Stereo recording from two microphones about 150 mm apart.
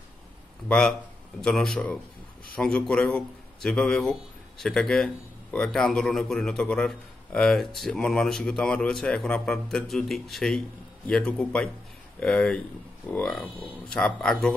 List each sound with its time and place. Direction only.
0.7 s a man's voice: 5° left (ahead or behind)